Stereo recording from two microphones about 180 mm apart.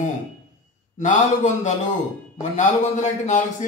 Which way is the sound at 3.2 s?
40° left (ahead or behind).